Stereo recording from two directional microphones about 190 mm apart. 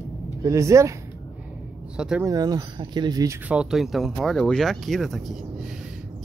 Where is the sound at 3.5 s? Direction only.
5° right (ahead or behind).